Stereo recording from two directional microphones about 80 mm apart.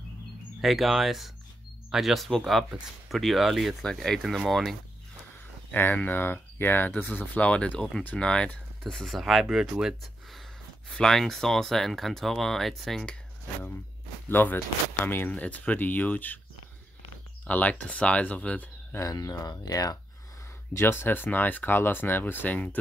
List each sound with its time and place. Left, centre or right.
0.6 s speech: centre
5.7 s speech: left; by 10.4 s centre
10.9 s speech: centre
14.3 s speech: left
17.5 s speech: left
18.9 s speech: left
20.7 s speech: left